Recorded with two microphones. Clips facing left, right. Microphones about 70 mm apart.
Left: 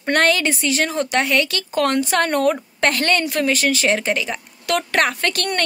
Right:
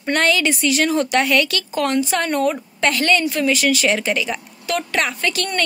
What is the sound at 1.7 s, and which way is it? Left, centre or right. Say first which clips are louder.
Speech: left 2 dB; left.